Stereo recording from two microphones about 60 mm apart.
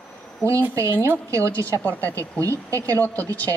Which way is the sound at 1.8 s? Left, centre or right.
Left.